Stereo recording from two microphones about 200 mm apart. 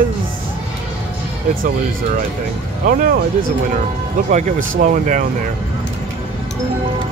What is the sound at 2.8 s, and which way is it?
Speech, 45° right (ahead or behind).